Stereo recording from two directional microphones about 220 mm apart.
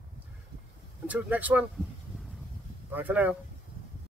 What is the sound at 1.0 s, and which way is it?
Speech, 5° right (ahead or behind).